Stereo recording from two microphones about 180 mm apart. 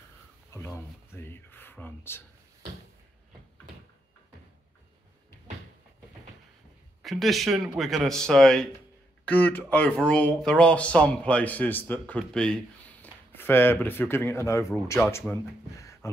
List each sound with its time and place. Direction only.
0.5 s speech: 15° left (ahead or behind)
7.0 s a man's voice: centre (ahead or behind)
15.8 s a sound: 15° left (ahead or behind)